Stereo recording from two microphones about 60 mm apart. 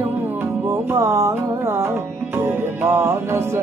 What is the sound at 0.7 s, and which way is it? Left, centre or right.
Music, right.